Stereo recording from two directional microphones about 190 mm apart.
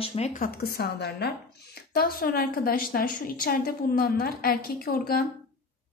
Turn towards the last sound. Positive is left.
turn(degrees=50)  # may be behind; listen again after turning